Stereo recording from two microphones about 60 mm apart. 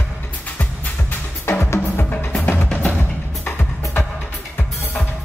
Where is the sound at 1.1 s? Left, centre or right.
Left.